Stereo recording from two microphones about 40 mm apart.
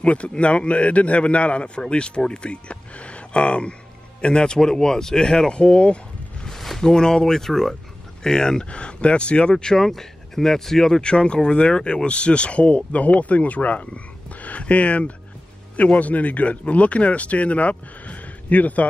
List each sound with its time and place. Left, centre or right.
0.0 s speech: left; by 5.6 s centre
5.6 s speech: left
6.5 s a sound: centre
6.8 s speech: centre
11.0 s speech: left